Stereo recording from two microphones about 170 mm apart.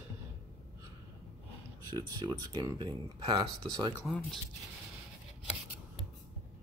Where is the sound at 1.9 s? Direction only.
20° right (ahead or behind).